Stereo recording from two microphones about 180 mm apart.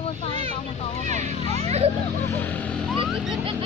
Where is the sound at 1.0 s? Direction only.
40° right (ahead or behind).